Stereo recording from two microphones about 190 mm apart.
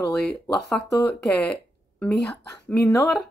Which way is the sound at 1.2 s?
5° left (ahead or behind).